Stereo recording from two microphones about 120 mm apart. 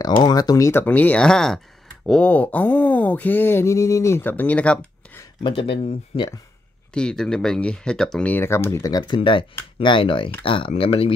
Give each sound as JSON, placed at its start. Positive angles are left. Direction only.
{"t": 0.2, "sound": "speech", "side_deg": 35}
{"t": 2.0, "sound": "a sound", "side_deg": 10}
{"t": 5.4, "sound": "speech", "side_deg": 45}
{"t": 6.1, "sound": "speech", "side_deg": 35}
{"t": 6.9, "sound": "a sound", "side_deg": 5}
{"t": 9.8, "sound": "speech", "side_deg": 45}